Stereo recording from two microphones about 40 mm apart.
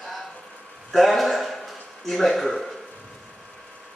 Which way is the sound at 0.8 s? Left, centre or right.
Centre.